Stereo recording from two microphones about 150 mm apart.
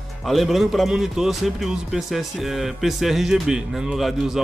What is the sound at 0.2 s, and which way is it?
A man's voice, centre (ahead or behind).